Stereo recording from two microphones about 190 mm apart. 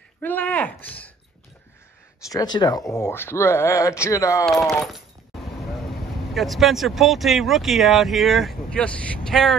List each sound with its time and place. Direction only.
0.2 s speech: 10° left (ahead or behind)
0.8 s a sound: 10° left (ahead or behind)
2.2 s speech: 20° left (ahead or behind)
5.9 s speech: centre (ahead or behind)